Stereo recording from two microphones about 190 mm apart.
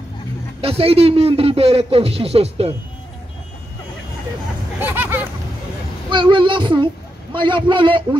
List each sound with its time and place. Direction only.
0.6 s a man's voice: 30° right (ahead or behind)
4.7 s a sound: 10° right (ahead or behind)
6.0 s child singing: 25° right (ahead or behind)